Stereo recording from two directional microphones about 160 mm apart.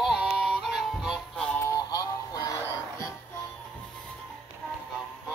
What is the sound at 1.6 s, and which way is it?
Music, 20° left (ahead or behind).